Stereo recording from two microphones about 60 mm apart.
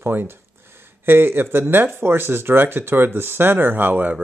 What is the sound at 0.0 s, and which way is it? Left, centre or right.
Speech, right.